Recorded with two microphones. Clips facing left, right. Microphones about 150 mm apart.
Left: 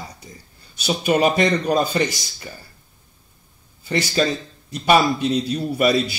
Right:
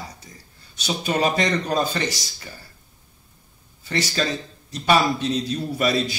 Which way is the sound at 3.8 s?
10° left (ahead or behind).